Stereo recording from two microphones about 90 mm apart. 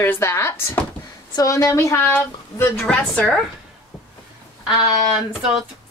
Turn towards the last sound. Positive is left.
turn(degrees=-10)  # may be behind; listen again after turning